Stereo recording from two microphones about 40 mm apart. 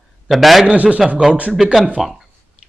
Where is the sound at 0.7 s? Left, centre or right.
Right.